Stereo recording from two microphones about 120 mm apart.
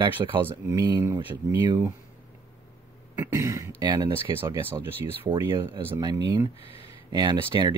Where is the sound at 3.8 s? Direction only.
35° right (ahead or behind).